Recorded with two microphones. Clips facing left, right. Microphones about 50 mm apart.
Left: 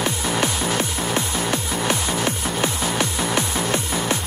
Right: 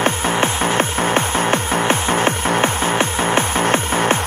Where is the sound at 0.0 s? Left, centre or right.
Right.